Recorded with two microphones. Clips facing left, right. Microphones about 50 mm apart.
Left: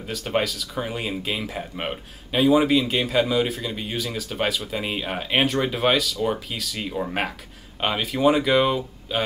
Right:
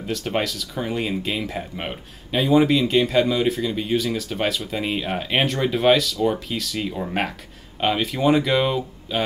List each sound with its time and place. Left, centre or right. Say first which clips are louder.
0.0 s speech: even; centre